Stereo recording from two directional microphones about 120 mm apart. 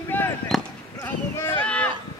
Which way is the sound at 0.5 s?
Centre (ahead or behind).